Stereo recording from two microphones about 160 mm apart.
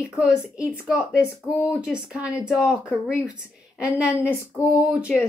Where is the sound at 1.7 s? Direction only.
5° right (ahead or behind).